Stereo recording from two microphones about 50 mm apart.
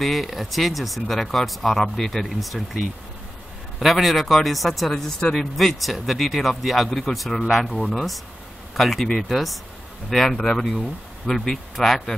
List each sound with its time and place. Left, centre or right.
0.0 s speech: centre